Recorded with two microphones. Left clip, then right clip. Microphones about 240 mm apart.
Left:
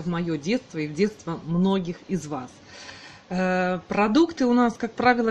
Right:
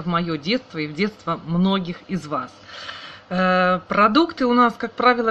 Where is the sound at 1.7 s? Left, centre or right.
Left.